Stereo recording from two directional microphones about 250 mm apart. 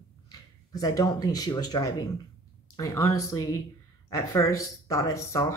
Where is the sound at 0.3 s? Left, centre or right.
Centre.